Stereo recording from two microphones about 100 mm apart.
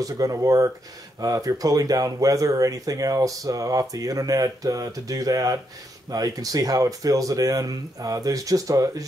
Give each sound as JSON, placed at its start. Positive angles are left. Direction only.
{"t": 0.0, "sound": "speech", "side_deg": -35}